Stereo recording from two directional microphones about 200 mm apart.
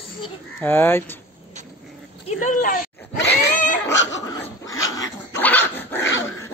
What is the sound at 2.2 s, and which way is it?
Speech, 40° left (ahead or behind).